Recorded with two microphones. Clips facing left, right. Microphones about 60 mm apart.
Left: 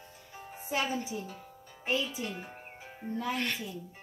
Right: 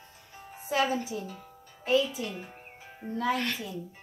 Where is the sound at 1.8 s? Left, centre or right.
Left.